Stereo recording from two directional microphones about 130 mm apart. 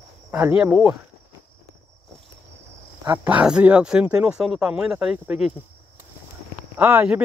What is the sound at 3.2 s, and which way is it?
Speech, 10° right (ahead or behind).